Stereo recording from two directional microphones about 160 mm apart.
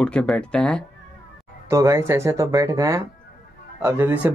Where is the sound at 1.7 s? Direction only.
20° right (ahead or behind).